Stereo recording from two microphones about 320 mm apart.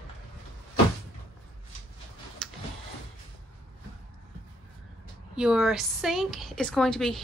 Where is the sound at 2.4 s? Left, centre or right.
Centre.